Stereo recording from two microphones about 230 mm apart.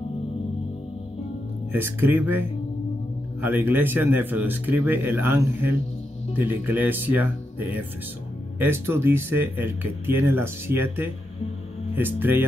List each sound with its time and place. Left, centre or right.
1.7 s speech: centre